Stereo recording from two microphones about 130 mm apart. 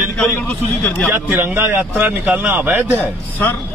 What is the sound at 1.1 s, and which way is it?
A man's voice, 15° right (ahead or behind).